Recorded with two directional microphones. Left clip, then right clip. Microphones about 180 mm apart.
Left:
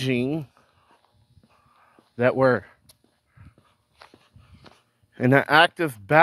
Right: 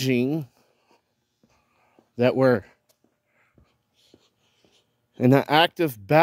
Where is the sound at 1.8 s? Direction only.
45° right (ahead or behind).